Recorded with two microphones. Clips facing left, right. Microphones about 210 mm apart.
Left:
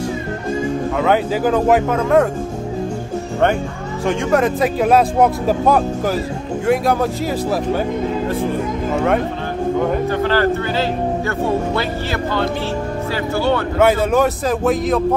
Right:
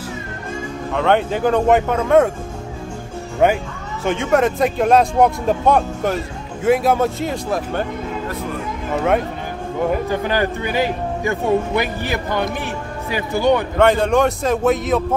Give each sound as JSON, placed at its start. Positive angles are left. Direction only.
{"t": 0.9, "sound": "speech", "side_deg": 5}
{"t": 4.0, "sound": "speech", "side_deg": 0}
{"t": 8.9, "sound": "speech", "side_deg": 0}
{"t": 10.0, "sound": "speech", "side_deg": -15}
{"t": 13.7, "sound": "speech", "side_deg": 5}